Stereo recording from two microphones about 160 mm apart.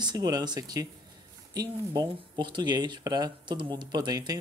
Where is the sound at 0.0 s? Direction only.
25° right (ahead or behind).